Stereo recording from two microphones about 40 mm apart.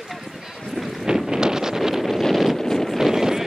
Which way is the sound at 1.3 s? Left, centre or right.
Centre.